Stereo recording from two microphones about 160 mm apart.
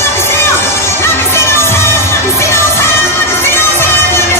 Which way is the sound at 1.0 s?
15° left (ahead or behind).